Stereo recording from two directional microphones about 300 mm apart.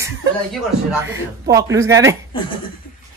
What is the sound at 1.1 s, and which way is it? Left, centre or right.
Speech, centre.